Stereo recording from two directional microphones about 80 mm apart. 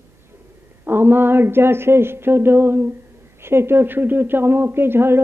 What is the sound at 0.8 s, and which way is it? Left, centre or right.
A woman's voice, right.